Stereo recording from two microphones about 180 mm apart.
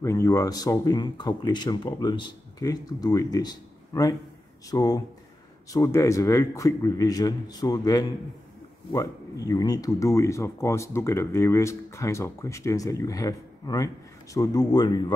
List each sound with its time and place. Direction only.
0.0 s speech: 15° left (ahead or behind)